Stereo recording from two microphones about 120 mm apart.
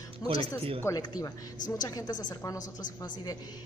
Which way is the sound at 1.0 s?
30° left (ahead or behind).